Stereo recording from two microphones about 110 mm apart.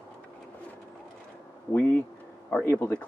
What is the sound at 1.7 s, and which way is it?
Speech, 20° left (ahead or behind).